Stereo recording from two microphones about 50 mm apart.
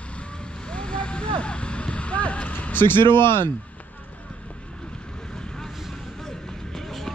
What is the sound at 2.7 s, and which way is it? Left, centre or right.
Speech, left.